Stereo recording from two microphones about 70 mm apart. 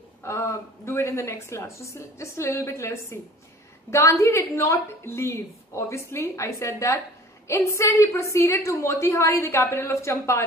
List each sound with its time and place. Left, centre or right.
0.2 s a woman's voice: left